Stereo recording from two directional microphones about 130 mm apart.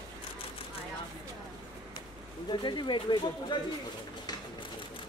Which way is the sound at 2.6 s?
35° left (ahead or behind).